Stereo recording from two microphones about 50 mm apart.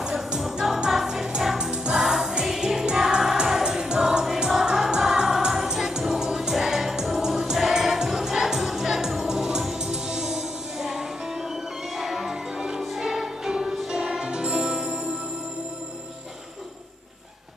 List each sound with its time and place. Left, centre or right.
0.0 s music: centre
2.0 s music: centre